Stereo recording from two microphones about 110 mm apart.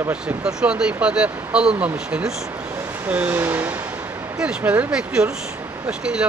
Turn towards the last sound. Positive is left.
turn(degrees=-10)  # may be behind; listen again after turning